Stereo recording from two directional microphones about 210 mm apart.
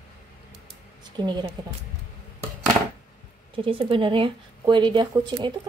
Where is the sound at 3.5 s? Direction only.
25° right (ahead or behind).